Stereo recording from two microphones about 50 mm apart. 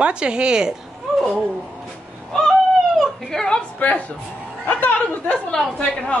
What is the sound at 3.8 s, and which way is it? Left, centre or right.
Speech, left.